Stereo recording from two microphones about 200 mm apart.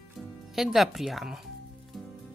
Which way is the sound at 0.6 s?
Centre (ahead or behind).